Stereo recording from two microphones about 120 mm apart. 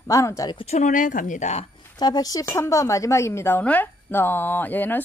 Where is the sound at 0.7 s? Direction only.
90° left; by 1.7 s 70° left (ahead or behind).